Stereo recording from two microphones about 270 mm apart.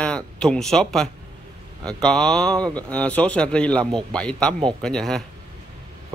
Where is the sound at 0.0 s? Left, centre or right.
Centre.